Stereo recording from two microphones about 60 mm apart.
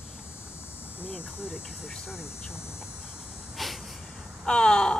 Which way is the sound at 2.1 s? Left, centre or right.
Left.